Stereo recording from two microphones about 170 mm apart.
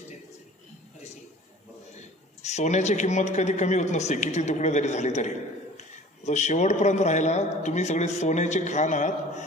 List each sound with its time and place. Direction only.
2.0 s a man's voice: 40° left (ahead or behind)